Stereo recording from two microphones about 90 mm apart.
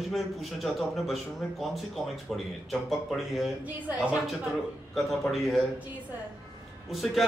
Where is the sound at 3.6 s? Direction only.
20° right (ahead or behind).